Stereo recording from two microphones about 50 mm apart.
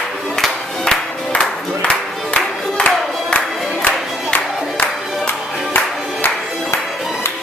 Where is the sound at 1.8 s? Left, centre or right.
Left.